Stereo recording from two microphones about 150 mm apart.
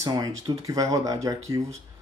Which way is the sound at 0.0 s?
20° right (ahead or behind).